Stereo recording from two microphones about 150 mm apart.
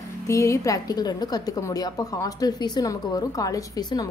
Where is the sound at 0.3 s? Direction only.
20° left (ahead or behind).